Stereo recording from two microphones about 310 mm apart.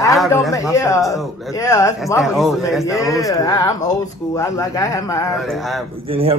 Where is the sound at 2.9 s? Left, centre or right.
Centre.